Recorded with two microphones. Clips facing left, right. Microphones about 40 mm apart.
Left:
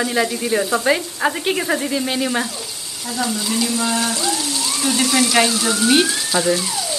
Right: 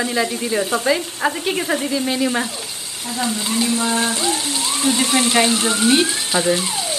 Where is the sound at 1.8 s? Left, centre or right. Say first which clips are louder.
Right 1 dB; left.